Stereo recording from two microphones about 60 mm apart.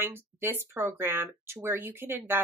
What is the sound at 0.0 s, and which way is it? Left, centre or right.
Speech, right.